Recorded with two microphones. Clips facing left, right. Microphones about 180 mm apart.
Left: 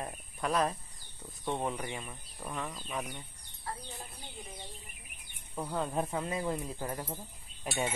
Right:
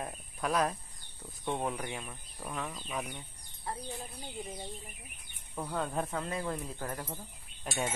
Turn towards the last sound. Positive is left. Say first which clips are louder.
# left 1 dB
turn(degrees=5)  # may be behind; listen again after turning